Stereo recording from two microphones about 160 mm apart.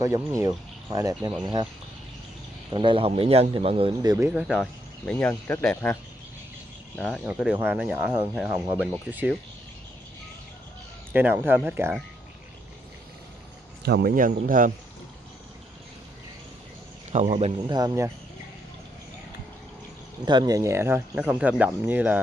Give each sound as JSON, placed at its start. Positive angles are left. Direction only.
{"t": 0.0, "sound": "speech", "side_deg": -20}
{"t": 2.7, "sound": "speech", "side_deg": -30}
{"t": 4.3, "sound": "speech", "side_deg": -5}
{"t": 7.0, "sound": "speech", "side_deg": 5}
{"t": 7.2, "sound": "speech", "side_deg": -5}
{"t": 11.1, "sound": "speech", "side_deg": -15}
{"t": 13.8, "sound": "speech", "side_deg": -80}
{"t": 17.1, "sound": "speech", "side_deg": -45}
{"t": 17.6, "sound": "speech", "side_deg": -25}
{"t": 20.2, "sound": "speech", "side_deg": -25}